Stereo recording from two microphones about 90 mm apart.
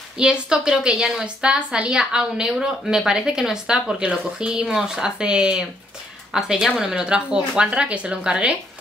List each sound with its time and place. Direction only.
0.2 s a woman's voice: 10° right (ahead or behind)